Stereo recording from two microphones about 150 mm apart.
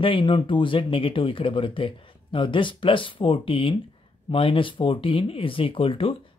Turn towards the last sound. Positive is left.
turn(degrees=35)  # may be behind; listen again after turning